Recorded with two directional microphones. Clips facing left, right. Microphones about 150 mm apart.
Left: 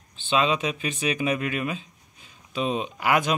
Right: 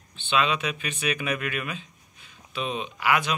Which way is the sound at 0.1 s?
35° left (ahead or behind).